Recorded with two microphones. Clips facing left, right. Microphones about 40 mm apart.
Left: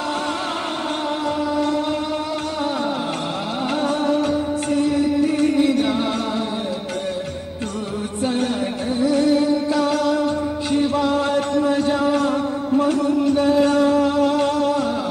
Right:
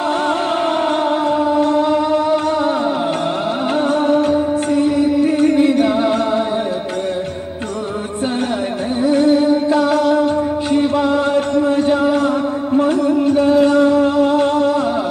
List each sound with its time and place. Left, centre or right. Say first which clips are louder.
1.5 s chant: right 6 dB; right
3.8 s music: right 5 dB; right
9.0 s music: right 4 dB; right
13.3 s music: right 4 dB; right